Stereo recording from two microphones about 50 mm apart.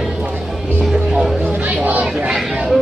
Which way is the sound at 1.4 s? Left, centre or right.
Right.